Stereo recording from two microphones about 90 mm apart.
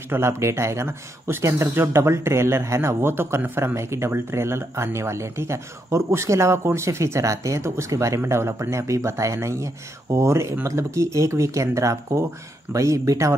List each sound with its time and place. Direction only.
0.1 s speech: 30° right (ahead or behind)